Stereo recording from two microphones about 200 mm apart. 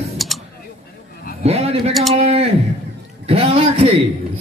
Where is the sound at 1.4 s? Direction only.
30° right (ahead or behind).